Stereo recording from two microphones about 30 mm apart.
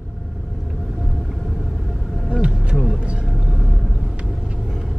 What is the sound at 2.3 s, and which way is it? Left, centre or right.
Vehicle, right.